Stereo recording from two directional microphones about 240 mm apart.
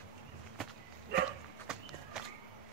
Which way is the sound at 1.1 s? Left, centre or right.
Right.